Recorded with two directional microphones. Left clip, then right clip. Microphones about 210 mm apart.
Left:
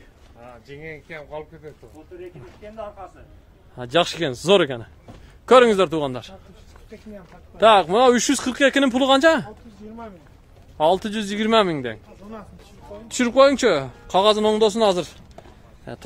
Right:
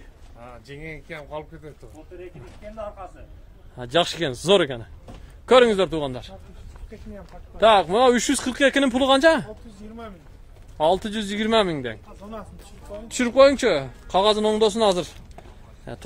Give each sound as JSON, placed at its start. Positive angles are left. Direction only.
{"t": 0.7, "sound": "speech", "side_deg": -60}
{"t": 3.7, "sound": "a man's voice", "side_deg": 10}
{"t": 7.5, "sound": "speech", "side_deg": 10}
{"t": 10.8, "sound": "a man's voice", "side_deg": 10}
{"t": 13.1, "sound": "a man's voice", "side_deg": 10}